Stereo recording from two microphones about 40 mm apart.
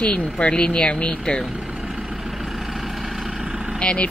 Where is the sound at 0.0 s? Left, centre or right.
Left.